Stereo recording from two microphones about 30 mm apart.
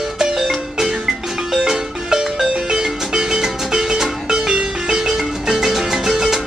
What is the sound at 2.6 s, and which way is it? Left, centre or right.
Music, centre.